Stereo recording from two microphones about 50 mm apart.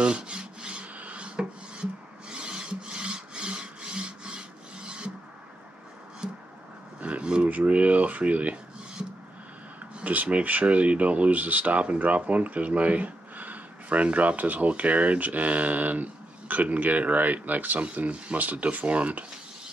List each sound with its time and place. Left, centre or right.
0.0 s rub: centre
7.0 s a sound: right
9.9 s speech: right